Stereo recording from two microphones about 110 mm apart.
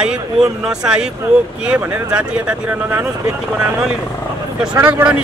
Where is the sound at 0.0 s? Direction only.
5° right (ahead or behind).